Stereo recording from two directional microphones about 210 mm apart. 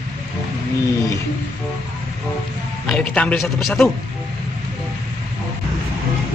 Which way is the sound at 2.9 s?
5° left (ahead or behind).